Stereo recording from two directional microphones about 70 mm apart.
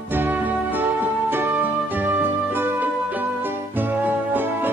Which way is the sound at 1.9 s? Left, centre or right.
Right.